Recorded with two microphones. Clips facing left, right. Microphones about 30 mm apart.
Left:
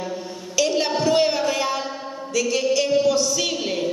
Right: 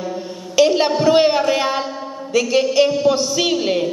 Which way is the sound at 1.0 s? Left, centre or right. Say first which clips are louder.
Right 6 dB; right.